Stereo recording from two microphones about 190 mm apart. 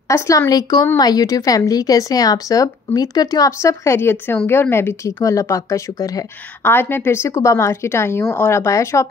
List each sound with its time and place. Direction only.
0.1 s a woman's voice: 15° left (ahead or behind)